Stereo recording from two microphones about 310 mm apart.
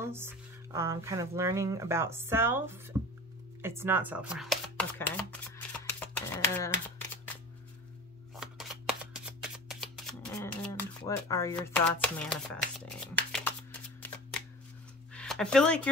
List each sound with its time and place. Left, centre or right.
0.0 s speech: centre
3.6 s shuffling cards: centre
8.4 s shuffling cards: centre
15.1 s speech: centre